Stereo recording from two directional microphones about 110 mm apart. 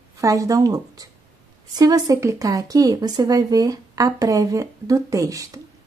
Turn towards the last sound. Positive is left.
turn(degrees=-30)  # may be behind; listen again after turning